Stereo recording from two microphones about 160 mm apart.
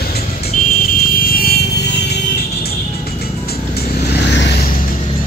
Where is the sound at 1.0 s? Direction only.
65° left (ahead or behind).